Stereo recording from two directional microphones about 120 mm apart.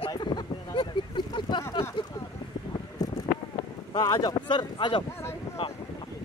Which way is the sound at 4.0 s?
35° left (ahead or behind).